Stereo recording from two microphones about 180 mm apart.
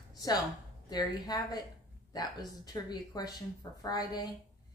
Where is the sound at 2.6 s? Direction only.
20° left (ahead or behind).